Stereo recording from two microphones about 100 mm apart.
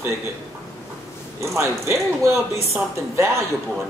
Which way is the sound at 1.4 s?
30° right (ahead or behind).